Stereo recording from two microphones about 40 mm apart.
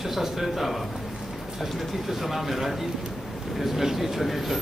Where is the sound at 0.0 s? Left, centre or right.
Centre.